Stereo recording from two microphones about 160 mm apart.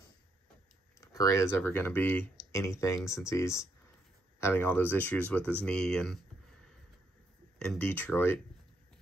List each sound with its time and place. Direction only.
1.0 s speech: 20° left (ahead or behind); by 6.1 s 5° left (ahead or behind)
7.8 s speech: 10° left (ahead or behind)